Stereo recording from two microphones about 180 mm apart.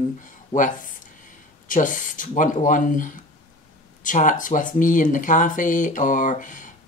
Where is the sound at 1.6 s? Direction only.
45° left (ahead or behind).